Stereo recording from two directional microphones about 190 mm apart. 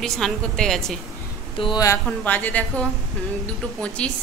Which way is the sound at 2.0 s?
10° left (ahead or behind).